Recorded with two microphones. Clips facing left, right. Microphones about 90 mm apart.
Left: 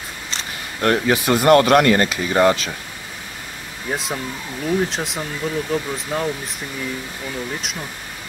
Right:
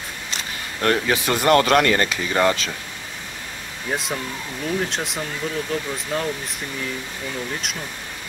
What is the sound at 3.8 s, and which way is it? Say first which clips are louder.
Speech: left 1 dB; centre (ahead or behind).